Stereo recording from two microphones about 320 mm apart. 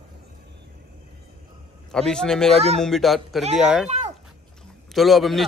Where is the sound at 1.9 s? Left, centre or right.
Centre.